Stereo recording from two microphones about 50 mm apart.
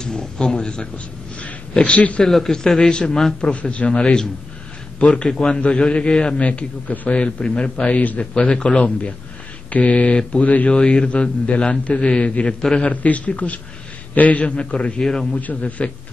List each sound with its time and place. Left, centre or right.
0.0 s a man's voice: centre
2.2 s a man's voice: centre
15.3 s a man's voice: left